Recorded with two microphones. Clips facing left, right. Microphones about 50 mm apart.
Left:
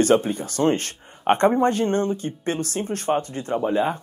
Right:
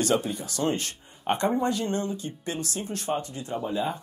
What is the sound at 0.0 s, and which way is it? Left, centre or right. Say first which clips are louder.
Speech: left 7 dB; left.